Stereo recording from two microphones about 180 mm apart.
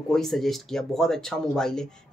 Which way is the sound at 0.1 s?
Centre (ahead or behind).